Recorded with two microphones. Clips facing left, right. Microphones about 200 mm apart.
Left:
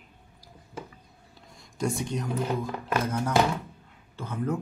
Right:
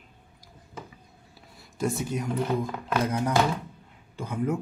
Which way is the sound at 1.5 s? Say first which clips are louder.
Right 1 dB; 5° right (ahead or behind).